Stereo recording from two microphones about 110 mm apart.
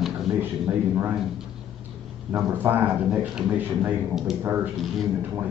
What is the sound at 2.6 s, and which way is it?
A man's voice, 20° right (ahead or behind).